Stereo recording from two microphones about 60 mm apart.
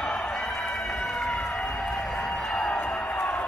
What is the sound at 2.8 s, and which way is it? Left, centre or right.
Music, left.